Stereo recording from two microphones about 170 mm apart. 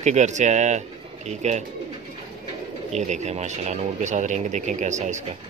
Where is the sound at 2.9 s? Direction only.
40° right (ahead or behind).